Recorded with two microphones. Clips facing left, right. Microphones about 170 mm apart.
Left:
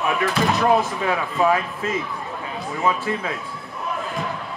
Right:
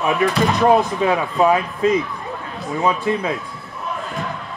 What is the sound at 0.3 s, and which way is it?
Speech, centre (ahead or behind).